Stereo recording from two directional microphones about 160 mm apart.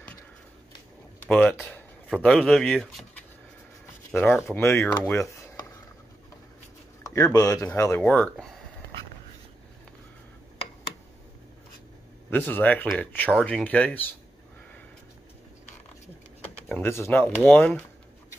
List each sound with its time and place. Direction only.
1.2 s speech: 5° left (ahead or behind)
7.0 s speech: 20° left (ahead or behind)
8.1 s speech: 5° left (ahead or behind)
12.3 s speech: 10° left (ahead or behind)
16.6 s speech: 10° left (ahead or behind)